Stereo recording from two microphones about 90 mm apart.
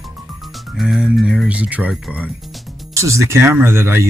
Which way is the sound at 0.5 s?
Centre (ahead or behind).